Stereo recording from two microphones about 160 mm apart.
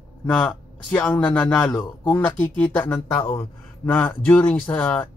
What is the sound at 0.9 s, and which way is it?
Speech, 10° left (ahead or behind).